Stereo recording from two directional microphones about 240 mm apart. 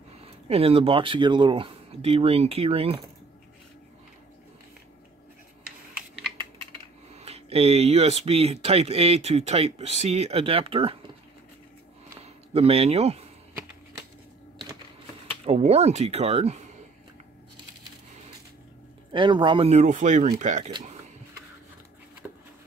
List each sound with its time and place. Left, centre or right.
0.5 s speech: right
7.2 s speech: right
12.2 s speech: right
15.4 s speech: right
19.1 s speech: centre